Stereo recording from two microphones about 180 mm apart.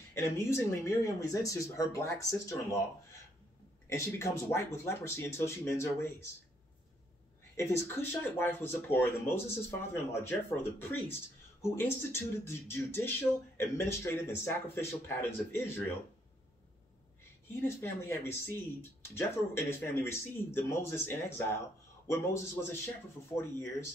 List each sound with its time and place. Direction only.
0.1 s speech: 15° left (ahead or behind)
3.9 s speech: 15° left (ahead or behind)
7.5 s speech: 15° left (ahead or behind)
17.6 s speech: 15° left (ahead or behind)